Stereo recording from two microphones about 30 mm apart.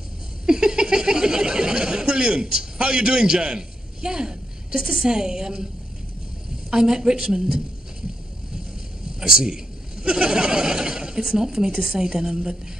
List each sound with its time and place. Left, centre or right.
0.5 s a sound: right
5.0 s a woman's voice: right
6.7 s a woman's voice: right
9.2 s speech: right